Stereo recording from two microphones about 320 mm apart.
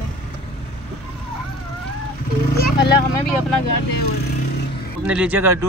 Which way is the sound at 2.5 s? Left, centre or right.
Left.